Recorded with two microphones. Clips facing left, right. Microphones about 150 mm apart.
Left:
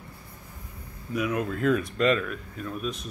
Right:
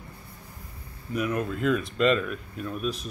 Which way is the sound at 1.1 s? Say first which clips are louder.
Even; 5° left (ahead or behind).